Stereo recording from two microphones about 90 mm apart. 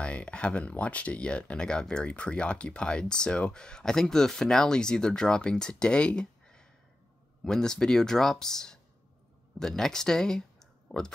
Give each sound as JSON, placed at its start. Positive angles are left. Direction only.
{"t": 0.0, "sound": "speech", "side_deg": 10}